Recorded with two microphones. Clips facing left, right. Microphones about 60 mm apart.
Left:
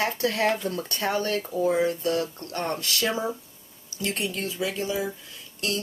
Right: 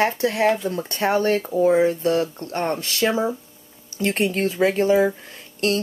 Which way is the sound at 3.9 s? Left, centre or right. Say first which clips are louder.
Right 8 dB; right.